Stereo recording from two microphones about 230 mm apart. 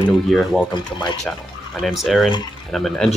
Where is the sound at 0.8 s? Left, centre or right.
Centre.